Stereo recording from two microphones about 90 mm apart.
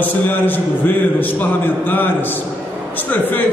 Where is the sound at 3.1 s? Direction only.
20° left (ahead or behind).